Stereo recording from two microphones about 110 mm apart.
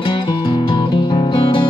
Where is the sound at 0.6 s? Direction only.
45° left (ahead or behind).